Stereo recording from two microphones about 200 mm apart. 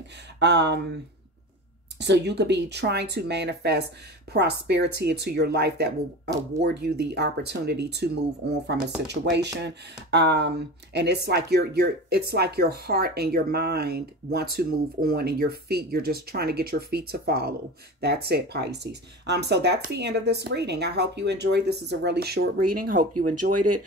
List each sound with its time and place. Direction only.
0.4 s speech: 60° right (ahead or behind)
2.0 s speech: 55° right (ahead or behind); by 23.8 s 40° right (ahead or behind)